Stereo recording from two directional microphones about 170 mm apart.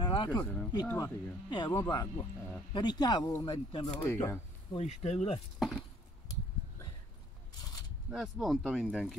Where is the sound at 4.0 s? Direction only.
15° left (ahead or behind).